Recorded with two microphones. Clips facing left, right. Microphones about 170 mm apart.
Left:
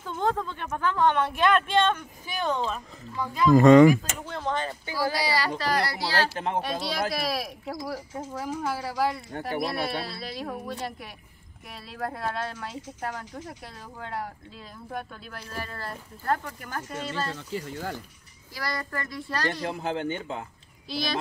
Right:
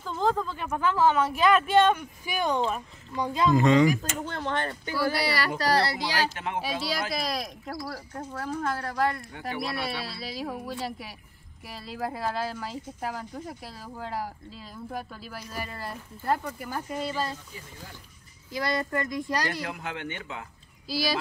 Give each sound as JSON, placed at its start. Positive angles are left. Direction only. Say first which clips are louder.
{"t": 0.0, "sound": "speech", "louder": "right 1 dB", "side_deg": 0}
{"t": 3.5, "sound": "speech", "louder": "left 7 dB", "side_deg": 50}
{"t": 4.3, "sound": "speech", "louder": "left 2 dB", "side_deg": -65}
{"t": 5.6, "sound": "a child's voice", "louder": "right 2 dB", "side_deg": -35}
{"t": 6.3, "sound": "speech", "louder": "left 4 dB", "side_deg": 35}
{"t": 6.6, "sound": "speech", "louder": "left 1 dB", "side_deg": 0}
{"t": 17.3, "sound": "speech", "louder": "left 7 dB", "side_deg": 85}
{"t": 18.5, "sound": "a child's voice", "louder": "right 5 dB", "side_deg": -20}
{"t": 19.6, "sound": "speech", "louder": "left 5 dB", "side_deg": 30}
{"t": 20.9, "sound": "speech", "louder": "right 2 dB", "side_deg": -5}